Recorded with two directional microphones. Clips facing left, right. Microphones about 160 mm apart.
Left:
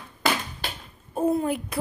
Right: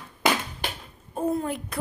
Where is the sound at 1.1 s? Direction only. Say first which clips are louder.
Left 3 dB; 5° left (ahead or behind).